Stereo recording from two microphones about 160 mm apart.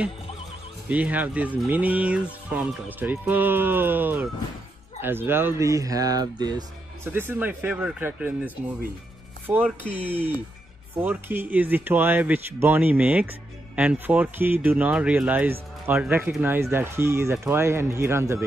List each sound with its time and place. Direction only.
0.8 s speech: 10° right (ahead or behind); by 6.5 s 25° right (ahead or behind)
7.1 s speech: 15° right (ahead or behind)